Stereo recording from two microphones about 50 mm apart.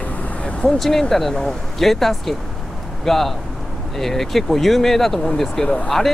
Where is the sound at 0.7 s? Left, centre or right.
Centre.